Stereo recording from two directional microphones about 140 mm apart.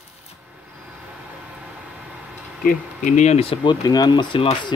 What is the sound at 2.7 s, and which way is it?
Speech, 65° left (ahead or behind).